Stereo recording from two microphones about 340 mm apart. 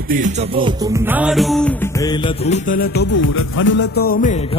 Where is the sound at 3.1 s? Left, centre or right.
Left.